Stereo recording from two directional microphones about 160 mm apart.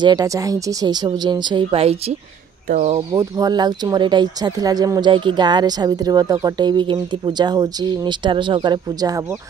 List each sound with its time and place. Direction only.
0.0 s speech: 25° right (ahead or behind)
3.1 s speech: 25° right (ahead or behind)